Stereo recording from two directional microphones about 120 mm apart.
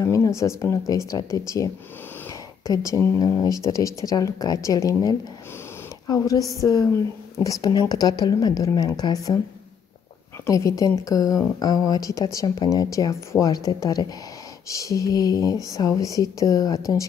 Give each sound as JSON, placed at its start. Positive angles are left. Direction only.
{"t": 0.0, "sound": "a sound", "side_deg": 25}
{"t": 0.4, "sound": "a woman's voice", "side_deg": 25}
{"t": 10.4, "sound": "speech", "side_deg": 25}